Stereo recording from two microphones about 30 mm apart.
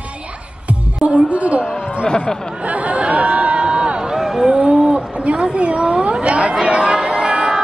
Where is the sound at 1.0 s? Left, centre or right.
Right.